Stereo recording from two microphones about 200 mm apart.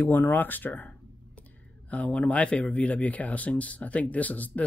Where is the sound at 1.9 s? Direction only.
5° left (ahead or behind).